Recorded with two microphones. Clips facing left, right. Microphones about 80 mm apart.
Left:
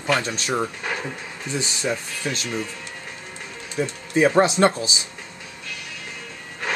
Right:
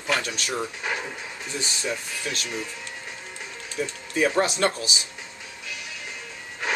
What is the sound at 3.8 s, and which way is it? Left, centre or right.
Speech, left.